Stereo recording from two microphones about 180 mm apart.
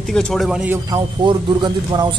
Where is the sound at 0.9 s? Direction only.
25° right (ahead or behind).